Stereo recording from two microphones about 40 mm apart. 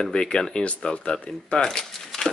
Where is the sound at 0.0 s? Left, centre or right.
Centre.